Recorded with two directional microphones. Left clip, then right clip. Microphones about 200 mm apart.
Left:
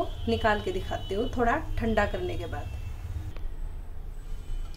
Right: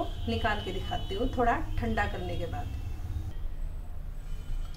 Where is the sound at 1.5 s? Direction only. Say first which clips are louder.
Left 2 dB; 45° left (ahead or behind).